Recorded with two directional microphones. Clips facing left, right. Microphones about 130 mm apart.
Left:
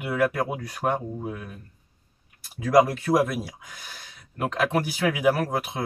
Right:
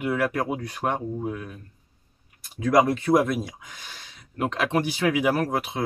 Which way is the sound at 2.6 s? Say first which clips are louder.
Left 1 dB; 5° left (ahead or behind).